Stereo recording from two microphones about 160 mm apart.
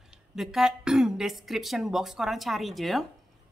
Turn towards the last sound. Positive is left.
turn(degrees=0)  # may be behind; listen again after turning